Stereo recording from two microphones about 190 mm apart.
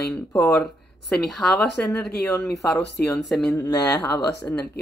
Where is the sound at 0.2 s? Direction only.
10° left (ahead or behind).